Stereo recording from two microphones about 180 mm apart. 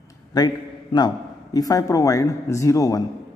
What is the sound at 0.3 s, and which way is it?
Speech, 20° left (ahead or behind).